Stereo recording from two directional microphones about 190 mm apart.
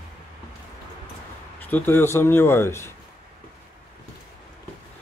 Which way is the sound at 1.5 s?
10° left (ahead or behind).